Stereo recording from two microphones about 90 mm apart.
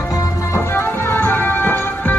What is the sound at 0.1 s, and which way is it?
Music, 40° left (ahead or behind).